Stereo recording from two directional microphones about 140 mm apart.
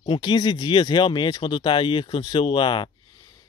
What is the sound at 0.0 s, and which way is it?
Speech, 35° left (ahead or behind).